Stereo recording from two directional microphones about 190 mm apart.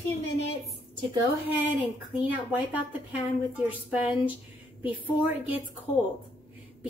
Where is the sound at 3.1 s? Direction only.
5° right (ahead or behind).